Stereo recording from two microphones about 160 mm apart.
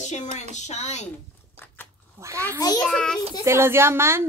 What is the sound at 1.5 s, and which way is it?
Biting, 15° left (ahead or behind).